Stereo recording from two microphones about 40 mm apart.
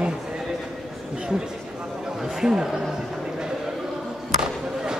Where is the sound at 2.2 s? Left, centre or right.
Centre.